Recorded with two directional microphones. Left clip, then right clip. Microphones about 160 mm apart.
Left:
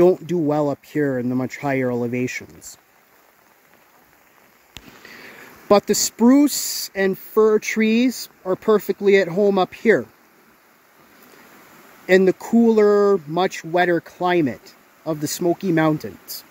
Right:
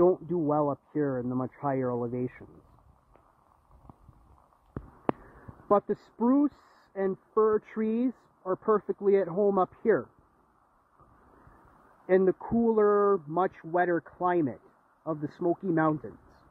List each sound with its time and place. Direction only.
0.1 s speech: 15° left (ahead or behind)
5.7 s speech: 20° left (ahead or behind)
6.1 s speech: 35° left (ahead or behind)
6.4 s speech: 20° left (ahead or behind); by 9.7 s 5° left (ahead or behind)
12.1 s speech: 10° left (ahead or behind)